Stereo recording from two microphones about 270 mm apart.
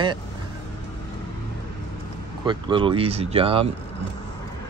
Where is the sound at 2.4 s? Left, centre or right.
Centre.